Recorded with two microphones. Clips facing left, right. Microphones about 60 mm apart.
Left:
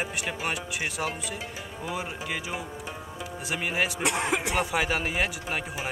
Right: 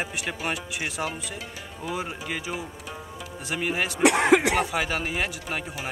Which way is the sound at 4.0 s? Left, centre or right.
Right.